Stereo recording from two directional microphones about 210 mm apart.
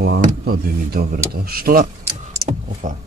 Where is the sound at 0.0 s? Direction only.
45° right (ahead or behind).